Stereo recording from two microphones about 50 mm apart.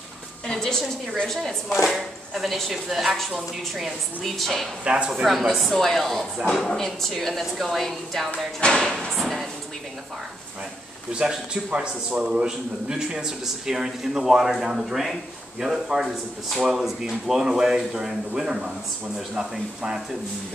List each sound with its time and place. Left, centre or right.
0.5 s a woman's voice: centre
1.9 s speech: centre
4.8 s speech: centre
5.5 s a woman's voice: centre
9.1 s speech: centre
11.1 s a man's voice: centre